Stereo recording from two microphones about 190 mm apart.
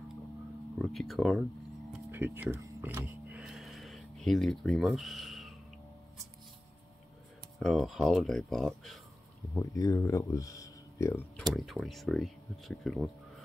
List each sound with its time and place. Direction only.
0.7 s speech: centre (ahead or behind)
1.9 s music: 10° right (ahead or behind)
7.5 s speech: centre (ahead or behind)
9.6 s speech: 15° left (ahead or behind)
11.5 s speech: centre (ahead or behind)